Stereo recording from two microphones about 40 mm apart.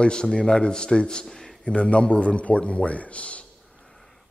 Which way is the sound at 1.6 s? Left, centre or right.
Left.